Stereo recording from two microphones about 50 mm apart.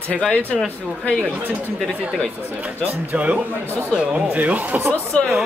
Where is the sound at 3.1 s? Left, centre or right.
Right.